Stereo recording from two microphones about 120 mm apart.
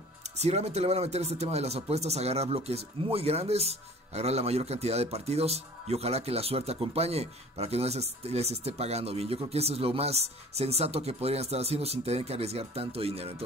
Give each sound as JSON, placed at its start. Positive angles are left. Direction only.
{"t": 0.4, "sound": "speech", "side_deg": -65}